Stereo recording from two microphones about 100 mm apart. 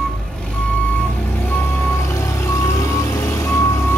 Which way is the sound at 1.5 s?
20° left (ahead or behind).